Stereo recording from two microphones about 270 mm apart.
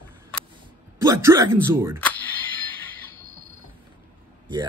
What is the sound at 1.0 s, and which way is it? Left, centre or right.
Speech, centre.